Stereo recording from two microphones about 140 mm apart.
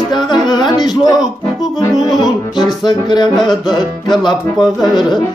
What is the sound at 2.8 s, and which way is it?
Music, 30° left (ahead or behind).